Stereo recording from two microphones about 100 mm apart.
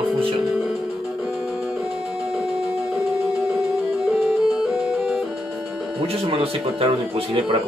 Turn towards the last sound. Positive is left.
turn(degrees=-65)  # may be behind; listen again after turning